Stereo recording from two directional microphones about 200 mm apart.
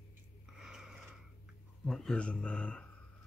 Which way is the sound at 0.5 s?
Centre (ahead or behind).